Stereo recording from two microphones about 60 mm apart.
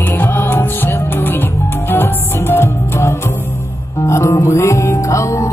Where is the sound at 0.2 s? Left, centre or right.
Left.